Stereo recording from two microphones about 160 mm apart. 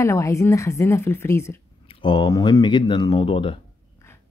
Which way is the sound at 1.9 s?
30° left (ahead or behind).